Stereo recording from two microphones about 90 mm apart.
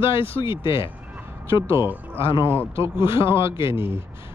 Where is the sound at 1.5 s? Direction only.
25° right (ahead or behind).